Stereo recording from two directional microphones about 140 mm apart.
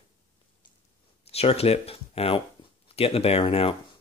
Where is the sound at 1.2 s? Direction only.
45° left (ahead or behind).